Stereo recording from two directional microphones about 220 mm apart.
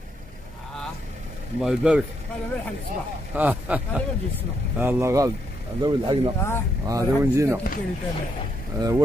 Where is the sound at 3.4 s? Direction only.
5° right (ahead or behind).